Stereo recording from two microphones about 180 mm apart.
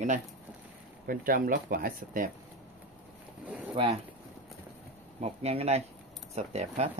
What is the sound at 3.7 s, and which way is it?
Speech, 30° right (ahead or behind).